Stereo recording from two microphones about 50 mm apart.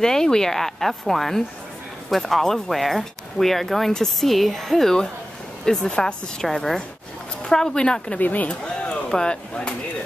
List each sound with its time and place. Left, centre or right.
0.0 s speech: centre
5.9 s a woman's voice: left
6.4 s speech: centre
8.2 s speech: left
8.5 s speech: centre